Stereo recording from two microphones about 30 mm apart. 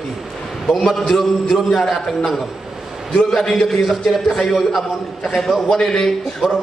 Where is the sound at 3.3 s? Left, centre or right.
Centre.